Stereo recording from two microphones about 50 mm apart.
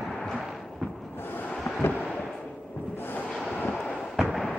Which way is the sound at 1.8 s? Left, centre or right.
Left.